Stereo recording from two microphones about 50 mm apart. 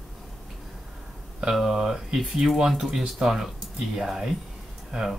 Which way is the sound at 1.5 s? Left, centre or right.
Centre.